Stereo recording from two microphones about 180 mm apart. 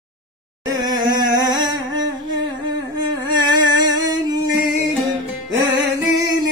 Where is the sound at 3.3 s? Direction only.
25° right (ahead or behind).